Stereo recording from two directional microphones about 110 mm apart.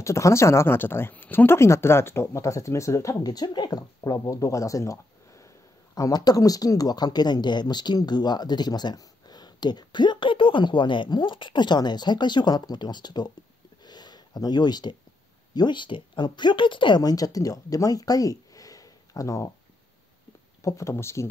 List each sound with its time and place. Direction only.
0.0 s speech: 25° left (ahead or behind)
13.8 s a sound: 40° left (ahead or behind)
15.5 s speech: 45° left (ahead or behind)
20.6 s speech: 25° left (ahead or behind)